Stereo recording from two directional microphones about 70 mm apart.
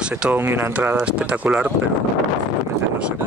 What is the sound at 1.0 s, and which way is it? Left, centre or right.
Speech, centre.